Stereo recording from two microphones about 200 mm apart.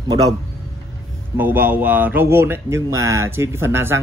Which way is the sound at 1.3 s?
10° right (ahead or behind).